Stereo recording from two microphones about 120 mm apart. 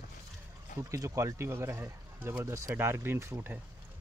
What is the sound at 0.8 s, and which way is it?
Speech, 25° right (ahead or behind).